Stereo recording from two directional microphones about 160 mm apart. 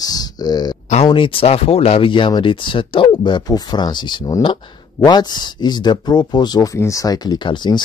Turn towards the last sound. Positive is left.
turn(degrees=30)  # may be behind; listen again after turning